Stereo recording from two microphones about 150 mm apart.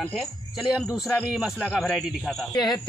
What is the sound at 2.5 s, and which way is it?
Speech, 25° left (ahead or behind).